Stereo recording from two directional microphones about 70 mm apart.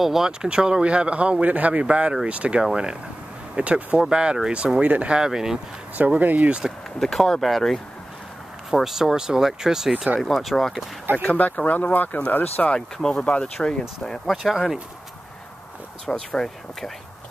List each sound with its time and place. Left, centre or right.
0.0 s speech: centre
5.9 s speech: right
6.6 s speech: centre
11.2 s speech: left
12.7 s speech: centre
16.1 s speech: centre